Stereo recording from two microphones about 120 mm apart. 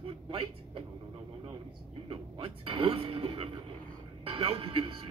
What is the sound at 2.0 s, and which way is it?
Music, 45° right (ahead or behind).